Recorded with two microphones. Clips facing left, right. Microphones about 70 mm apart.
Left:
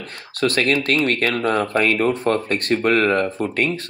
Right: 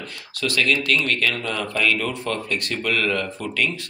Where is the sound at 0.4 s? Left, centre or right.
Left.